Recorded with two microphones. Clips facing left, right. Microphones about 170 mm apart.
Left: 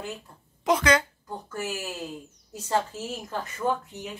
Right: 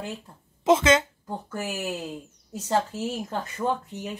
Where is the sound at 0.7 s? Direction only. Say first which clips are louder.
Right 3 dB; 25° right (ahead or behind).